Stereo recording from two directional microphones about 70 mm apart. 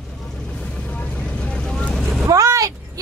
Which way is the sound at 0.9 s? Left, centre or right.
Centre.